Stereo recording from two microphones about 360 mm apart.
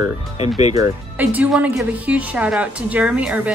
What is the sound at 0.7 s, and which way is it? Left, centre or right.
Speech, centre.